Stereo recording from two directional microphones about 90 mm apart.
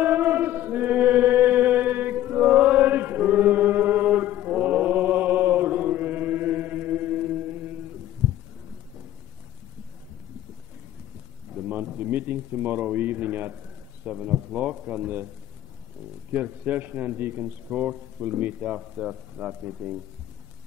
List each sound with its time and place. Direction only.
0.0 s chant: 20° right (ahead or behind)
11.5 s a sound: 15° right (ahead or behind)
14.0 s speech: 15° right (ahead or behind)
16.3 s a man's voice: 15° right (ahead or behind)